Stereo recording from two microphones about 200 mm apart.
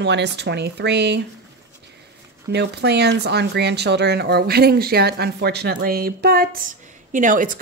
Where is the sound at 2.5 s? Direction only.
60° right (ahead or behind); by 7.5 s 40° right (ahead or behind).